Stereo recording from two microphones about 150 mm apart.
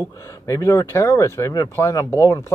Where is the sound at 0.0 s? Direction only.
20° left (ahead or behind).